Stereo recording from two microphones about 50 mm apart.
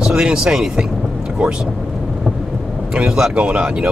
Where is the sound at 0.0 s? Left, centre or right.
Centre.